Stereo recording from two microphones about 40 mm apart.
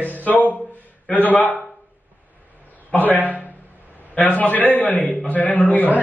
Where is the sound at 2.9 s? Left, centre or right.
Left.